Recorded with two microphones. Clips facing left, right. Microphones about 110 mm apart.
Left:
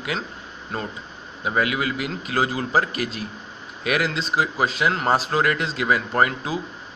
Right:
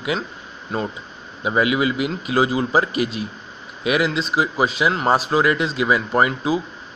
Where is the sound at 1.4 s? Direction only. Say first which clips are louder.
Right 4 dB; 15° right (ahead or behind).